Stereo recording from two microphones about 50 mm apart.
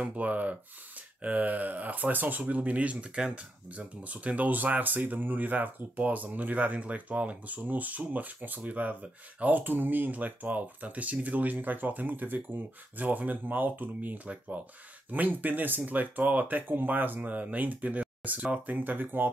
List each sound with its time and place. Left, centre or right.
0.1 s speech: right